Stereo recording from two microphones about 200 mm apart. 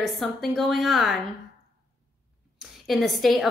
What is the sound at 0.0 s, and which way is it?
A woman's voice, centre (ahead or behind).